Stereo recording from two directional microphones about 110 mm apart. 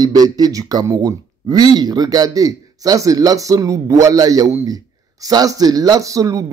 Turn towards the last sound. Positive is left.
turn(degrees=-30)  # may be behind; listen again after turning